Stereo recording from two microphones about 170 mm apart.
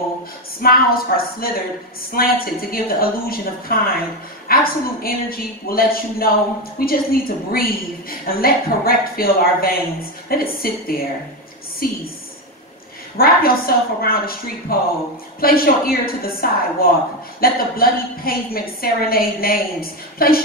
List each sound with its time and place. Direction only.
0.6 s a woman's voice: 60° left (ahead or behind)
4.5 s a sound: 60° left (ahead or behind)
5.0 s a woman's voice: 60° left (ahead or behind)
13.2 s a woman's voice: 60° left (ahead or behind)